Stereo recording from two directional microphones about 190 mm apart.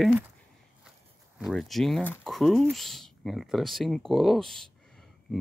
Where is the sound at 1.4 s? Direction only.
Centre (ahead or behind).